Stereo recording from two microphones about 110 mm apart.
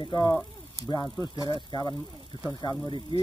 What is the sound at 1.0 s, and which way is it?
Speech, centre (ahead or behind).